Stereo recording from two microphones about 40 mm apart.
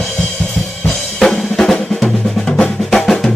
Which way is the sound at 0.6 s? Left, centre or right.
Centre.